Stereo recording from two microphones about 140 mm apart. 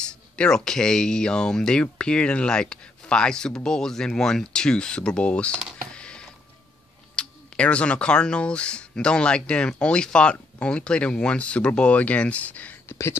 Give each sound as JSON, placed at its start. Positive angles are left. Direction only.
{"t": 0.4, "sound": "speech", "side_deg": 5}
{"t": 5.9, "sound": "a sound", "side_deg": 5}
{"t": 7.2, "sound": "speech", "side_deg": 10}